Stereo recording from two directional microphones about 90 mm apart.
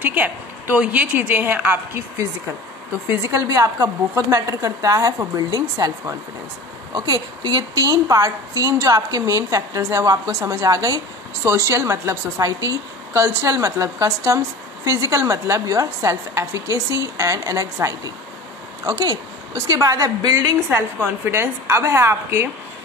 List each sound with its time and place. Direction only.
0.0 s a woman's voice: 20° right (ahead or behind)
3.3 s a woman's voice: 35° right (ahead or behind)
21.3 s a woman's voice: 30° right (ahead or behind)